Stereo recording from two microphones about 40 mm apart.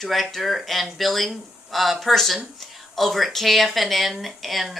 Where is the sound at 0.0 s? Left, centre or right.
Centre.